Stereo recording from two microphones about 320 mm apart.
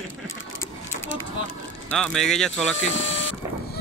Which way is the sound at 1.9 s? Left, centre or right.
Centre.